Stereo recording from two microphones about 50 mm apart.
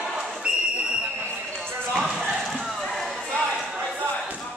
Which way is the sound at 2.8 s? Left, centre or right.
Centre.